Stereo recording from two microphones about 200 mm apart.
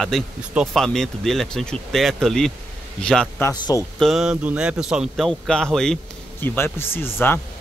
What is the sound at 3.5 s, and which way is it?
Speech, 15° left (ahead or behind).